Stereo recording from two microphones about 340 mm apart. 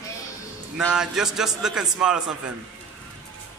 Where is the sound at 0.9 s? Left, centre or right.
Centre.